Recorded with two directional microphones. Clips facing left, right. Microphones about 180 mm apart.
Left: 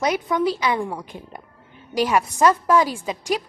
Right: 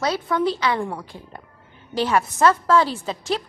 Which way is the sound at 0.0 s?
15° left (ahead or behind).